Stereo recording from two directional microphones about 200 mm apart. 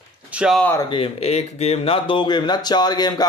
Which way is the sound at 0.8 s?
25° left (ahead or behind).